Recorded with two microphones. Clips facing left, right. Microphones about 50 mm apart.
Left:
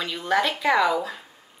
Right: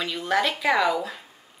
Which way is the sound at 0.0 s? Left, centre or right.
Centre.